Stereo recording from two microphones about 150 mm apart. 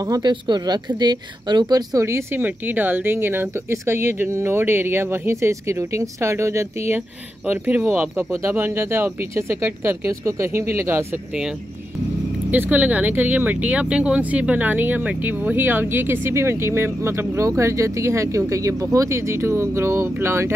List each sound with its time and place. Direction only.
0.0 s speech: 25° right (ahead or behind)
12.4 s speech: 10° right (ahead or behind)